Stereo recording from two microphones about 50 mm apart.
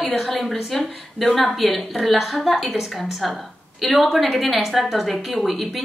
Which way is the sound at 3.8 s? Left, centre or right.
Centre.